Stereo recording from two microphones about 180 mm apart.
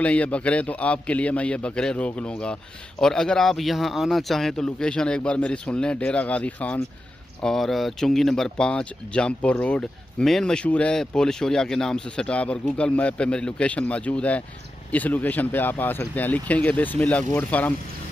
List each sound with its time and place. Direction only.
0.0 s a man's voice: 5° left (ahead or behind)